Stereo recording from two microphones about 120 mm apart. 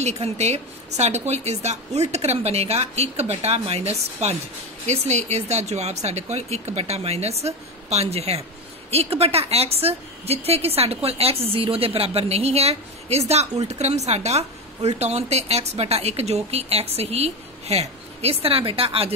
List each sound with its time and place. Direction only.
0.0 s a woman's voice: 65° right (ahead or behind)